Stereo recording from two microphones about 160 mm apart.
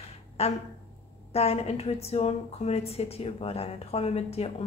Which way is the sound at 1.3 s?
40° left (ahead or behind).